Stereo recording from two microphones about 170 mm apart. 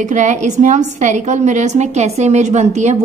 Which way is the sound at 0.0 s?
45° right (ahead or behind).